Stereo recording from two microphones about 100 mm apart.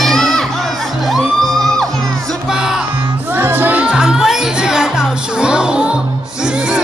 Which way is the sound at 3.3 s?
20° right (ahead or behind).